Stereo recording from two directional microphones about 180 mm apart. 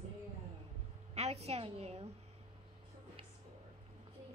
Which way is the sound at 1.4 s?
35° right (ahead or behind).